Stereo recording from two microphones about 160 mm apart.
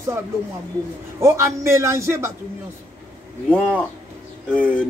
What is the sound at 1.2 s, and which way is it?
Speech, 15° right (ahead or behind).